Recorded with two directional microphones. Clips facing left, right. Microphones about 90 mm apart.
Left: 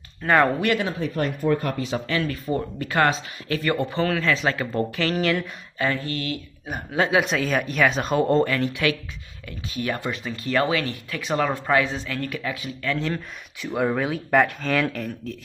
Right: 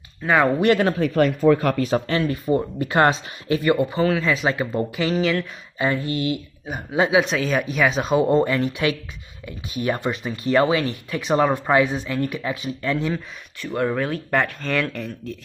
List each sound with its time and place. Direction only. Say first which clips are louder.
0.2 s speech: even; centre (ahead or behind)
0.8 s speech: right 7 dB; 65° right (ahead or behind); by 1.8 s 90° right
1.8 s speech: right 5 dB; 45° right (ahead or behind)
2.1 s speech: right 2 dB; 20° right (ahead or behind)
3.7 s speech: right 3 dB; 5° right (ahead or behind)
5.1 s speech: right 2 dB; 5° left (ahead or behind)
5.8 s speech: right 3 dB; 20° right (ahead or behind)
7.2 s speech: right 2 dB; centre (ahead or behind)
8.5 s speech: right 2 dB; 20° right (ahead or behind)
13.7 s speech: right 1 dB; 5° left (ahead or behind)